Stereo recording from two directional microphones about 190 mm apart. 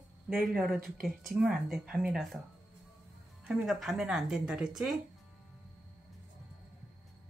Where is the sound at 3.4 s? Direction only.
Centre (ahead or behind).